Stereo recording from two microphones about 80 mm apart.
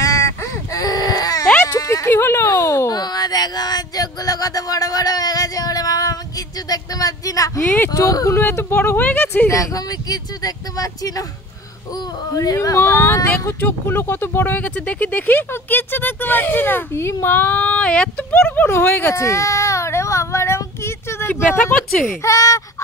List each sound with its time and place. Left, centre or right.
0.0 s a sound: left
2.0 s speech: left
2.5 s a sound: left
2.9 s a sound: left
7.6 s speech: centre
7.9 s speech: left
8.4 s speech: left
9.5 s speech: left
12.4 s speech: left
13.5 s speech: left
19.1 s child singing: left
21.7 s speech: centre
22.2 s speech: left